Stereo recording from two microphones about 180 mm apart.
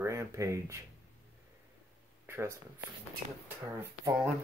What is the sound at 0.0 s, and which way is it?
Speech, 15° right (ahead or behind).